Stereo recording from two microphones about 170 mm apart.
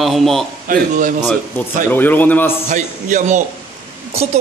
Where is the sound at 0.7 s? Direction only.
50° right (ahead or behind).